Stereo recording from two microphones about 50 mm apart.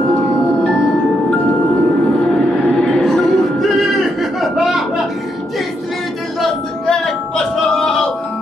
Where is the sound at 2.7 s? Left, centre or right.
Centre.